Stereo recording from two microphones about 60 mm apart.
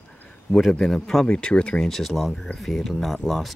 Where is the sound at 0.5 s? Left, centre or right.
Centre.